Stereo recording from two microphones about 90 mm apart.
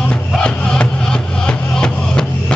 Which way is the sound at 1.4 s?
10° left (ahead or behind).